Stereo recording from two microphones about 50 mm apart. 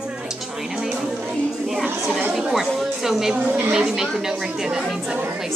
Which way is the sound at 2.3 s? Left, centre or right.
Centre.